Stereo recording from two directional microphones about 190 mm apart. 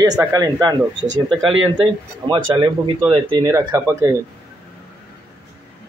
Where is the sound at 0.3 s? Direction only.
20° right (ahead or behind).